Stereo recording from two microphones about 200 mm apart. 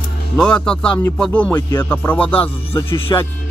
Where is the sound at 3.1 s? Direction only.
20° left (ahead or behind).